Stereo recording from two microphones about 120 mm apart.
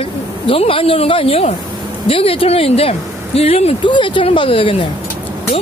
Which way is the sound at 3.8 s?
45° left (ahead or behind).